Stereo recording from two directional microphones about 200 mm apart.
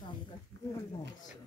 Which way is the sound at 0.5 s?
60° right (ahead or behind).